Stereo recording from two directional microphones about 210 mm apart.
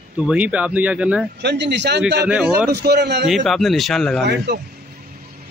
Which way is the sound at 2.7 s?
50° right (ahead or behind).